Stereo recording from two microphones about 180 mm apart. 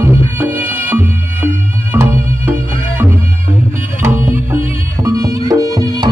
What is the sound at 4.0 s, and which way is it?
Music, 15° right (ahead or behind).